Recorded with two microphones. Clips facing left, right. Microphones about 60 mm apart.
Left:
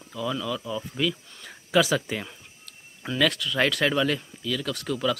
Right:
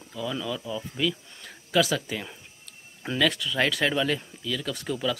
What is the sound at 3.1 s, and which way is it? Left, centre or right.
Speech, centre.